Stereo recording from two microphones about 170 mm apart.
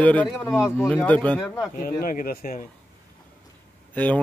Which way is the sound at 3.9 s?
10° left (ahead or behind).